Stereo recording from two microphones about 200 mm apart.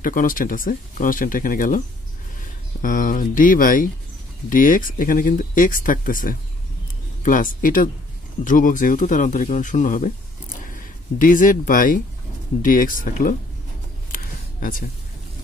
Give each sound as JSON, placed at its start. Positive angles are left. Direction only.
{"t": 0.0, "sound": "speech", "side_deg": 45}
{"t": 2.8, "sound": "speech", "side_deg": 45}
{"t": 11.1, "sound": "speech", "side_deg": 40}
{"t": 14.1, "sound": "a sound", "side_deg": 45}